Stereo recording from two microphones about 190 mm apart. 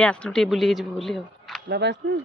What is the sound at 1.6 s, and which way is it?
Speech, 60° right (ahead or behind).